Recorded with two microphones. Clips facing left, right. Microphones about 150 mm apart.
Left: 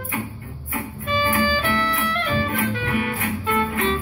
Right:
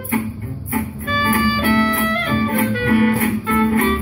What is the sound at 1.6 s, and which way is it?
Music, 35° right (ahead or behind).